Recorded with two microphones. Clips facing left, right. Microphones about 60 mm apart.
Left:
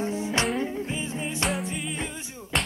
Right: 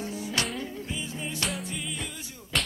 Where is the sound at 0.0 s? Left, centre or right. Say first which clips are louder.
Left 5 dB; left.